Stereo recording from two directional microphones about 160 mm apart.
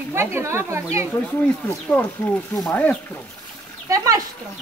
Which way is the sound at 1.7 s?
10° left (ahead or behind).